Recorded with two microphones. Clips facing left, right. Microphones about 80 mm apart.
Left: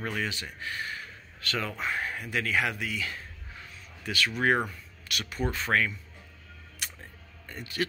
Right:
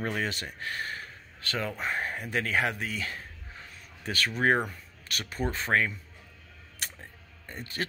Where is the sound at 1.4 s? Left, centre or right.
Right.